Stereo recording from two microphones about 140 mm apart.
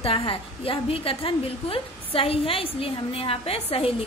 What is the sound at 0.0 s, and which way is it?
A woman's voice, 40° left (ahead or behind).